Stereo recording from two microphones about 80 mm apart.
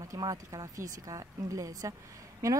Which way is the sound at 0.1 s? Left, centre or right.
Right.